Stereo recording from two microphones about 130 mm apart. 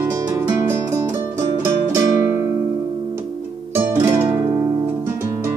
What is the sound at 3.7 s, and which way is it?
Music, 20° right (ahead or behind).